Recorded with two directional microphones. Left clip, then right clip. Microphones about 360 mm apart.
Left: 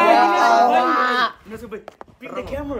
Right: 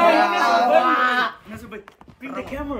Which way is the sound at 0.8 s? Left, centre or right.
Centre.